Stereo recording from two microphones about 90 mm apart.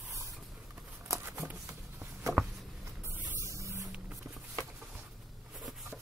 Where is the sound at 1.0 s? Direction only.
35° right (ahead or behind).